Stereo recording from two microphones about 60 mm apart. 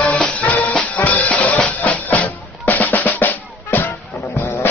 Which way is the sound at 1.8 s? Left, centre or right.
Left.